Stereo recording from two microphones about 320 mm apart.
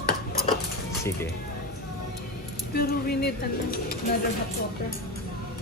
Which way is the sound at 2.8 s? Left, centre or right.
Left.